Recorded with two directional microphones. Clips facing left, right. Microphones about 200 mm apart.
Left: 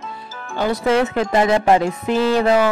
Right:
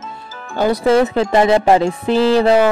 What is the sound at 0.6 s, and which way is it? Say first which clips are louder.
Speech: right 4 dB; 40° right (ahead or behind).